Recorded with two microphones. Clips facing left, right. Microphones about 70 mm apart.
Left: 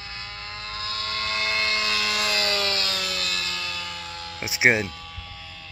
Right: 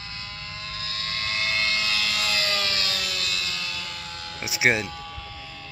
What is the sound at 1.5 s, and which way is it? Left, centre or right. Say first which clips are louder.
Vehicle: left 1 dB; centre.